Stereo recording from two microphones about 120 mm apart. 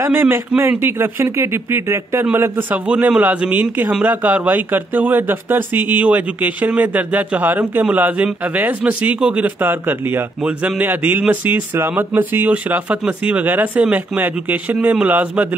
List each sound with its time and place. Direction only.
0.0 s a man's voice: 20° right (ahead or behind)